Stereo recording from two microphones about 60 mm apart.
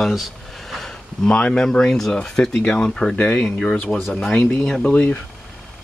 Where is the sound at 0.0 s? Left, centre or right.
Centre.